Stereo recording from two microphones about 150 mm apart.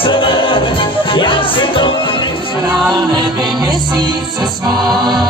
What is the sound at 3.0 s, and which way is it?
Music, 30° right (ahead or behind).